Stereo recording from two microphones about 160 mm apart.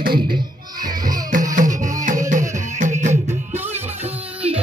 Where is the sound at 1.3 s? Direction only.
55° right (ahead or behind).